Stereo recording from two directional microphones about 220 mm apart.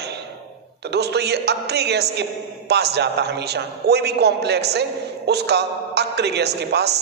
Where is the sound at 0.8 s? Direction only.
50° right (ahead or behind).